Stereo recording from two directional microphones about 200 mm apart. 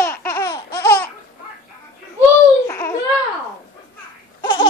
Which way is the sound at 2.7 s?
15° left (ahead or behind).